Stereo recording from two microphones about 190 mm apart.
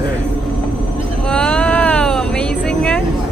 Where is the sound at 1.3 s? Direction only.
5° left (ahead or behind).